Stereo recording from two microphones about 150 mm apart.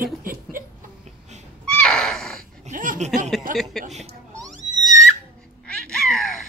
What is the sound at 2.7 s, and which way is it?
Speech, 55° right (ahead or behind).